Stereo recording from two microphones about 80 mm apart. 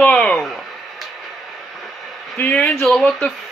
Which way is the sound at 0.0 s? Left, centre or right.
Centre.